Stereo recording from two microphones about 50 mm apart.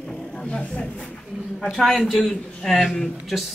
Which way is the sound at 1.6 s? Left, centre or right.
Centre.